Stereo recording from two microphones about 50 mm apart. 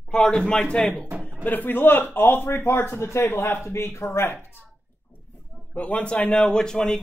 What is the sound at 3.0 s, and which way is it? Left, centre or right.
Speech, left.